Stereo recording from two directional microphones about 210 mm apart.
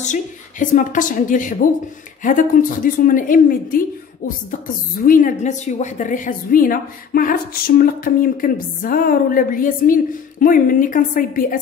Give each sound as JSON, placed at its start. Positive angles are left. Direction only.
{"t": 0.0, "sound": "a woman's voice", "side_deg": 35}
{"t": 5.0, "sound": "a woman's voice", "side_deg": 40}